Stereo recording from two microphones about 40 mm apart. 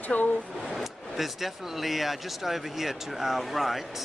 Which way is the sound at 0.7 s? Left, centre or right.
Centre.